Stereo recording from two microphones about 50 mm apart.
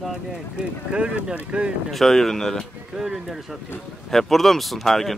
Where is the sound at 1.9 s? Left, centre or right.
Centre.